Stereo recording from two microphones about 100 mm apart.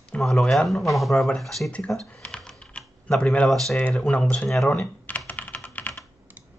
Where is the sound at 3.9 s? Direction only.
10° left (ahead or behind).